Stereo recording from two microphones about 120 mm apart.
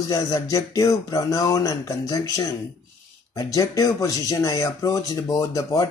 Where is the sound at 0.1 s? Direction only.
30° left (ahead or behind).